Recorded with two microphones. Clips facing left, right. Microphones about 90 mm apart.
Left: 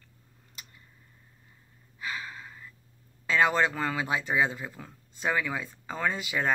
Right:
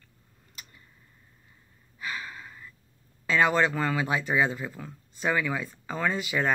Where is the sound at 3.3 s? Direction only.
20° left (ahead or behind).